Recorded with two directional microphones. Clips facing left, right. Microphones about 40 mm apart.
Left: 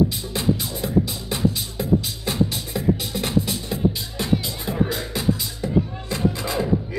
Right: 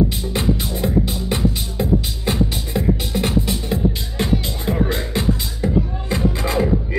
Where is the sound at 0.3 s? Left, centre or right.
Right.